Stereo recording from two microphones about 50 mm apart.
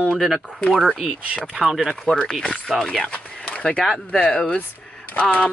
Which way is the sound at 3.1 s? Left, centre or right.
Centre.